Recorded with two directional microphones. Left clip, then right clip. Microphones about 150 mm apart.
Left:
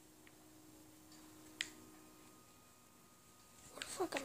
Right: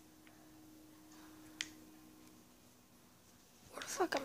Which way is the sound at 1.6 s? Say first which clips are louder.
Even; 45° right (ahead or behind).